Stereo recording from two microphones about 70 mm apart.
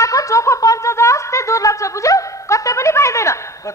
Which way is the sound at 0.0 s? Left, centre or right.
Left.